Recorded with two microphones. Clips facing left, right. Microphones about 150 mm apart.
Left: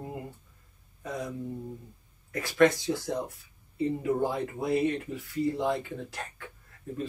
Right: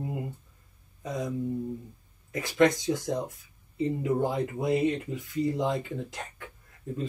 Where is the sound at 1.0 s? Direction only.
20° right (ahead or behind).